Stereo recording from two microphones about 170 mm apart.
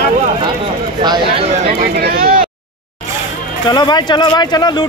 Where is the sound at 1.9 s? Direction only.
65° right (ahead or behind).